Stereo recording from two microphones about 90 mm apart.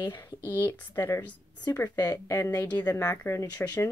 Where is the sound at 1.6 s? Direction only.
40° left (ahead or behind).